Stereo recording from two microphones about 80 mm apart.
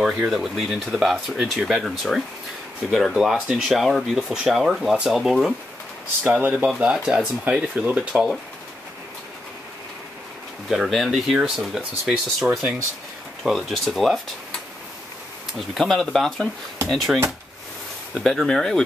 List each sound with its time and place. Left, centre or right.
0.0 s speech: centre
6.2 s speech: centre
8.1 s speech: centre
10.7 s speech: centre
15.7 s speech: centre
18.2 s speech: centre